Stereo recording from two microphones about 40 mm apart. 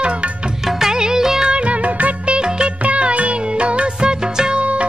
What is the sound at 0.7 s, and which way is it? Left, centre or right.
Music of bollywood, centre.